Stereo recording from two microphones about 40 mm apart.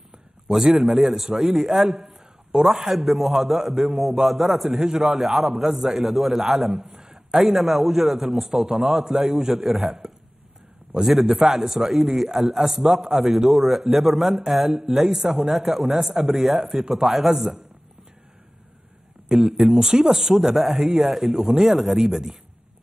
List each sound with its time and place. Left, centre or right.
0.5 s a man's voice: centre
6.8 s a sound: centre
7.3 s a man's voice: centre
19.2 s a man's voice: centre